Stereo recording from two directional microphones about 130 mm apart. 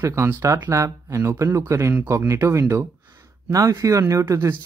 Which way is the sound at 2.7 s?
20° right (ahead or behind).